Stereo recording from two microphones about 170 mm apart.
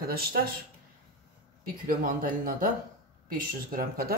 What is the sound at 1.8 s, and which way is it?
Speech, 55° right (ahead or behind).